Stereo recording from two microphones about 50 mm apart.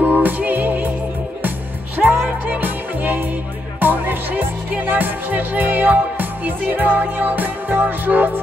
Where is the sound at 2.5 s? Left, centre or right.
Right.